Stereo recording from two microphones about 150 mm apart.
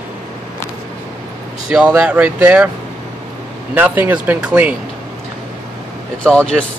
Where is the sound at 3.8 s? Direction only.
10° right (ahead or behind).